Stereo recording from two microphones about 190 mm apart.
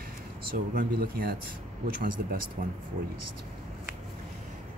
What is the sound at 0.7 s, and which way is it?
Speech, 50° right (ahead or behind).